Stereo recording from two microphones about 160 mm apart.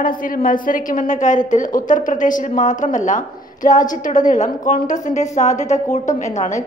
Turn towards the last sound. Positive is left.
turn(degrees=50)  # may be behind; listen again after turning